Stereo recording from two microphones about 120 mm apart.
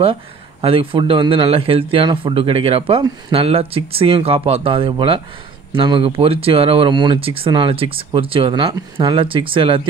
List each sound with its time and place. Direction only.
0.0 s speech: 50° right (ahead or behind)